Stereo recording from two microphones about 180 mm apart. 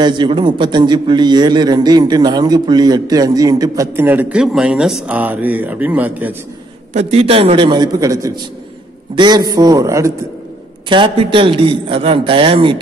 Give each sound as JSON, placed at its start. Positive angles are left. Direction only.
{"t": 0.0, "sound": "a man's voice", "side_deg": -25}
{"t": 6.9, "sound": "a man's voice", "side_deg": -40}
{"t": 10.9, "sound": "a man's voice", "side_deg": -30}